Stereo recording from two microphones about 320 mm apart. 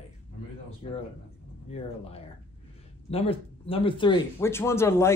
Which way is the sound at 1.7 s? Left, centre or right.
Centre.